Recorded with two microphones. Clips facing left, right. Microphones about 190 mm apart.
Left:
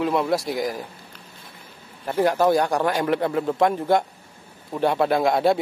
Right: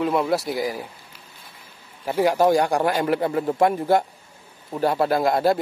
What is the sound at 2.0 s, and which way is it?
Speech, 10° right (ahead or behind).